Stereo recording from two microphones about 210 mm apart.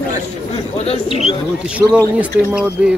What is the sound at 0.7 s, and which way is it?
Bird, 30° left (ahead or behind).